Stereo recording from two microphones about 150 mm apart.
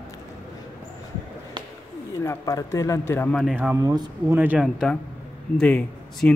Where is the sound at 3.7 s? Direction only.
25° right (ahead or behind).